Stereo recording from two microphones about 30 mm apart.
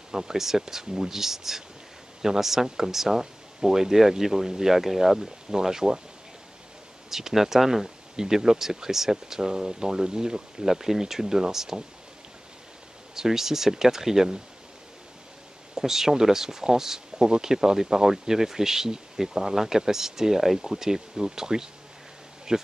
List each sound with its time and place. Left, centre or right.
0.1 s speech: centre
7.1 s speech: centre
13.1 s speech: centre
15.7 s speech: centre